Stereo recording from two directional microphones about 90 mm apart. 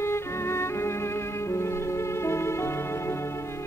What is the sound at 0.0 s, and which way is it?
Music, 30° left (ahead or behind).